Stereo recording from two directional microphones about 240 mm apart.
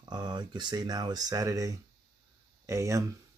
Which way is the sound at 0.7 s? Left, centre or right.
Centre.